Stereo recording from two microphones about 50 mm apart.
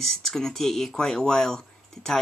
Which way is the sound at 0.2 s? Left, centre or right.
Centre.